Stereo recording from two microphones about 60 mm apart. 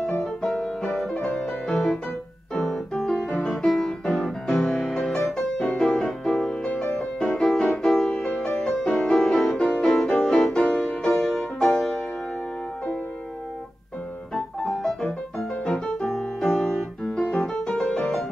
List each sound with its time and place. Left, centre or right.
0.2 s music: centre
2.5 s piano: centre
4.6 s music: centre
11.1 s music: centre
14.3 s music: centre